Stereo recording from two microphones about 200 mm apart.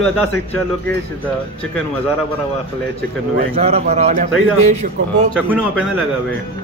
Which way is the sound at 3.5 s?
30° right (ahead or behind).